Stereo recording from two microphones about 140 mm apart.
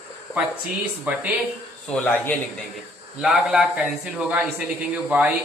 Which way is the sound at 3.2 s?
5° right (ahead or behind).